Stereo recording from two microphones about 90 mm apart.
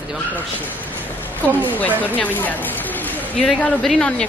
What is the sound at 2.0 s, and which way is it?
Speech, 20° left (ahead or behind).